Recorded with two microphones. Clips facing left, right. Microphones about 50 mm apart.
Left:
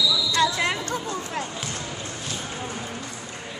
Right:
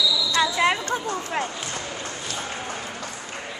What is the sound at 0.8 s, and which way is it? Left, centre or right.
Speech, right.